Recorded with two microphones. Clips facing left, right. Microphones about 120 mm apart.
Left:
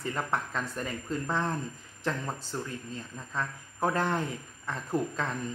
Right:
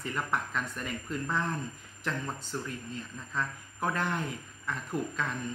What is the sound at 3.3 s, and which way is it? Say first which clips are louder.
Speech: left 1 dB; 30° left (ahead or behind).